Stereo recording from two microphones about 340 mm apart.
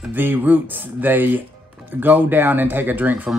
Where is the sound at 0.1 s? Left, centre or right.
Centre.